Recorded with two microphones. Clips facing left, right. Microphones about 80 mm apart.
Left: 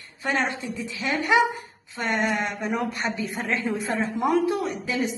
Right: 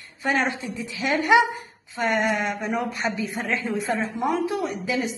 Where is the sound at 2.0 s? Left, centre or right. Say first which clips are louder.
Right 2 dB; centre.